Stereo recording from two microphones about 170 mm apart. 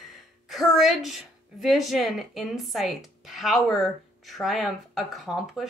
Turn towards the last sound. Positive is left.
turn(degrees=0)  # may be behind; listen again after turning